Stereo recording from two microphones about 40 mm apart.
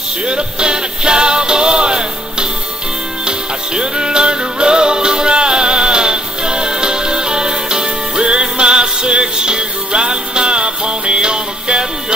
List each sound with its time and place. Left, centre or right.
0.3 s music: right